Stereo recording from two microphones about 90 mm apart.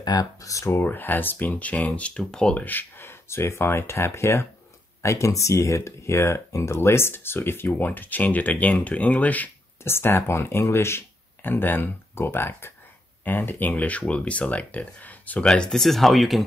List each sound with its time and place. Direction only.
0.0 s speech: 45° left (ahead or behind)
0.8 s speech: 20° left (ahead or behind)
2.6 s speech: 20° left (ahead or behind); by 16.4 s centre (ahead or behind)